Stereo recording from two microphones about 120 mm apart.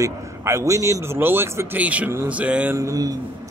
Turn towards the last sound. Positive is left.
turn(degrees=-30)  # may be behind; listen again after turning